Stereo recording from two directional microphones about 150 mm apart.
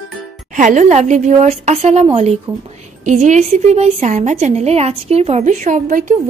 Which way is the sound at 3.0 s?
55° right (ahead or behind).